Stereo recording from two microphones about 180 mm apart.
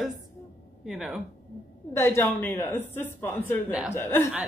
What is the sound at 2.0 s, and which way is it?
Speech, 15° left (ahead or behind).